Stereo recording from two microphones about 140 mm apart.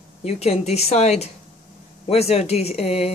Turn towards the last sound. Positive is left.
turn(degrees=45)  # may be behind; listen again after turning